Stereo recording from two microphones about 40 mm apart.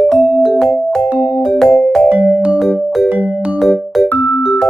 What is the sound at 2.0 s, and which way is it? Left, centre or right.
Music, right.